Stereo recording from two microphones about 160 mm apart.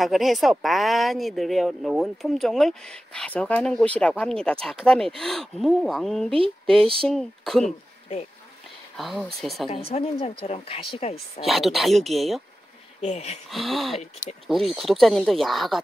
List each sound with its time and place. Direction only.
0.0 s speech: centre (ahead or behind)
6.6 s a sound: 5° left (ahead or behind)
7.1 s speech: centre (ahead or behind)
8.9 s speech: centre (ahead or behind)
9.7 s speech: 40° left (ahead or behind)
11.4 s speech: centre (ahead or behind)
13.0 s speech: 40° left (ahead or behind)
13.5 s speech: centre (ahead or behind)